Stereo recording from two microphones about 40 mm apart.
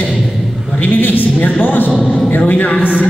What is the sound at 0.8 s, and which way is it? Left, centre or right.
Speech, left.